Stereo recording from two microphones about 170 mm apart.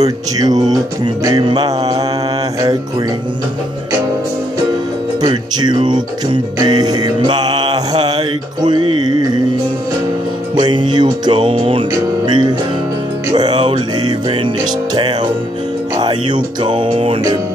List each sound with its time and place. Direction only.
0.0 s music: 20° right (ahead or behind)
5.2 s music: 25° right (ahead or behind)
10.5 s music: 25° right (ahead or behind)